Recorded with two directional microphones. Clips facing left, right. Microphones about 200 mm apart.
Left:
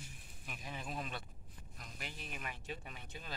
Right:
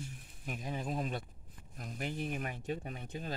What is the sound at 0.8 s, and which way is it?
Speech, 30° right (ahead or behind).